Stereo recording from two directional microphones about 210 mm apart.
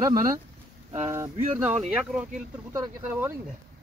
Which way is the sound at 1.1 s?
15° right (ahead or behind).